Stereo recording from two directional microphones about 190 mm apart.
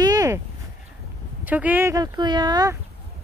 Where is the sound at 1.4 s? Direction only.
10° right (ahead or behind).